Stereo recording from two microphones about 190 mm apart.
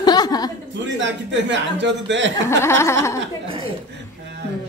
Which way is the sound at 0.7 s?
75° right (ahead or behind).